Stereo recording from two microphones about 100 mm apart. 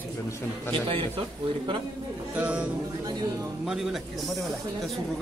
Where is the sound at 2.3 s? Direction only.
15° right (ahead or behind).